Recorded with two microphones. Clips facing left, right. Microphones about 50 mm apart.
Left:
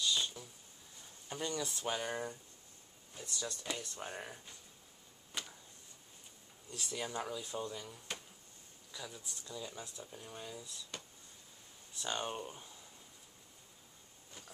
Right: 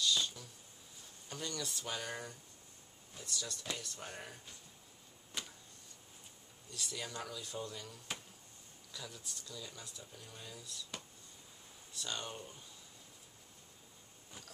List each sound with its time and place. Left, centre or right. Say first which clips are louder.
0.0 s a sound: right 1 dB; centre
1.3 s speech: left 3 dB; centre
4.1 s speech: left 3 dB; centre
5.3 s a sound: left 1 dB; centre
6.7 s speech: left 3 dB; left
11.9 s speech: left 4 dB; left